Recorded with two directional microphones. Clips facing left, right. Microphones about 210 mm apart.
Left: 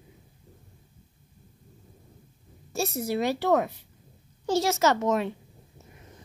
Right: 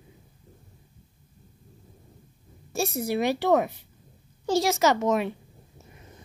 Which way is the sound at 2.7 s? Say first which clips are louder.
Right 1 dB; 10° right (ahead or behind).